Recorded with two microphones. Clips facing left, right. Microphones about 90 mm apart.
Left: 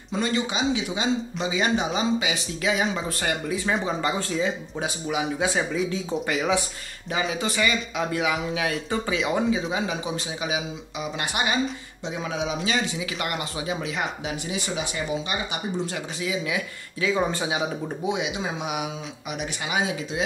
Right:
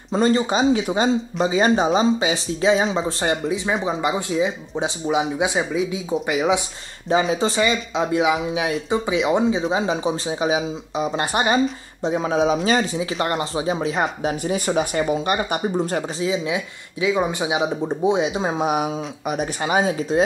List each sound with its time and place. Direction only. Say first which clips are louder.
0.1 s speech: right 7 dB; 40° right (ahead or behind); by 6.6 s 15° right (ahead or behind)
7.1 s speech: right 8 dB; 30° right (ahead or behind); by 16.0 s 45° right (ahead or behind)
16.2 s speech: right 2 dB; 25° right (ahead or behind)